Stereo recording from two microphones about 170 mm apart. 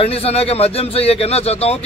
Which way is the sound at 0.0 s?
35° left (ahead or behind).